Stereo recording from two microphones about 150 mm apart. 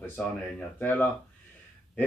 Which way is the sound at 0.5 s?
10° left (ahead or behind).